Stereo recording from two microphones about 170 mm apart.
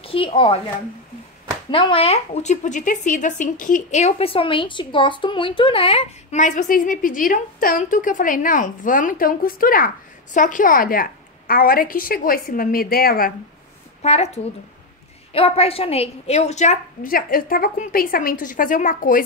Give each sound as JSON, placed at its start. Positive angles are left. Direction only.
{"t": 0.0, "sound": "speech", "side_deg": 30}
{"t": 1.7, "sound": "a woman's voice", "side_deg": 30}
{"t": 14.0, "sound": "a woman's voice", "side_deg": 40}